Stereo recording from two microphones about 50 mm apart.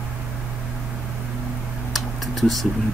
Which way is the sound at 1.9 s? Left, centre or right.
Centre.